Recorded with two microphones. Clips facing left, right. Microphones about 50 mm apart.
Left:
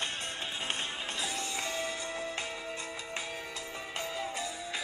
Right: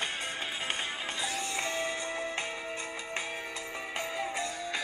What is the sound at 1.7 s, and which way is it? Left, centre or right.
Music, right.